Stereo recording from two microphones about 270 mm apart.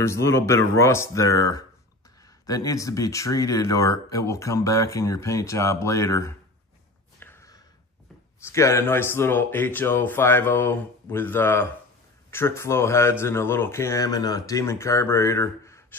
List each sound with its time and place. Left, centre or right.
0.0 s speech: centre
7.2 s a sound: centre
8.5 s speech: centre